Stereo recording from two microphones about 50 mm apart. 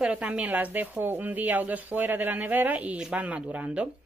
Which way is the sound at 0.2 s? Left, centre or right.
Right.